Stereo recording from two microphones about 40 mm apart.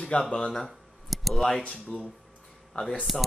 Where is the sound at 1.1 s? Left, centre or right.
Centre.